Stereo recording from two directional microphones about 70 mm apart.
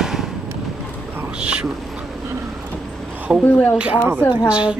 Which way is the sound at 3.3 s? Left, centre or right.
Right.